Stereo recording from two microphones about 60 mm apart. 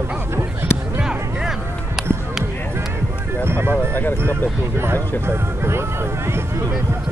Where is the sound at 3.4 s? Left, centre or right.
Right.